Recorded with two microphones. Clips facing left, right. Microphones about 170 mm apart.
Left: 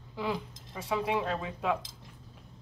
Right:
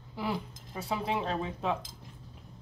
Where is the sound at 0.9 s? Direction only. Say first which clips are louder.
Left 2 dB; 25° right (ahead or behind).